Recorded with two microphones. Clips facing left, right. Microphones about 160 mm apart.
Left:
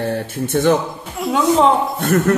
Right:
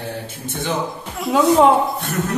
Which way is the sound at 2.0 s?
60° left (ahead or behind).